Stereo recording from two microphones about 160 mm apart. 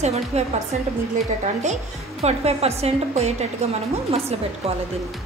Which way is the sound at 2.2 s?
40° right (ahead or behind).